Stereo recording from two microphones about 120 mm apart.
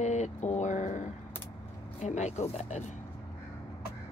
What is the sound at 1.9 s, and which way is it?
Speech, 75° left (ahead or behind).